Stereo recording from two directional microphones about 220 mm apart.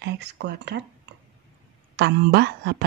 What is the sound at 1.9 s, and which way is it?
Speech, 50° right (ahead or behind).